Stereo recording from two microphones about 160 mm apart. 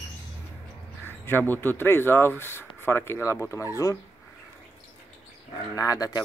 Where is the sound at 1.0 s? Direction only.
15° left (ahead or behind).